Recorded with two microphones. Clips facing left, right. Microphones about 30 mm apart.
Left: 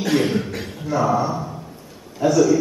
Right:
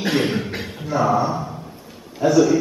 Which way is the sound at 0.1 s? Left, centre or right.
Centre.